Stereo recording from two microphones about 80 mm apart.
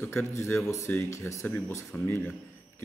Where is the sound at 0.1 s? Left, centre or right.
Left.